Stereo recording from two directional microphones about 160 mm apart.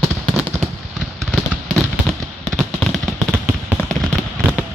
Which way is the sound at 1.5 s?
Centre (ahead or behind).